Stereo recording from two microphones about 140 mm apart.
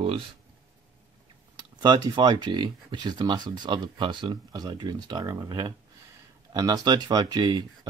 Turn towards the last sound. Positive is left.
turn(degrees=-30)  # may be behind; listen again after turning